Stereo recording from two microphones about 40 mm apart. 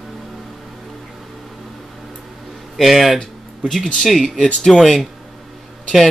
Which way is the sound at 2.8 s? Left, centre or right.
Centre.